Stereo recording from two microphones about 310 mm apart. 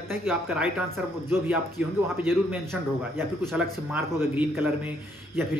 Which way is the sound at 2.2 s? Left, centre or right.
Centre.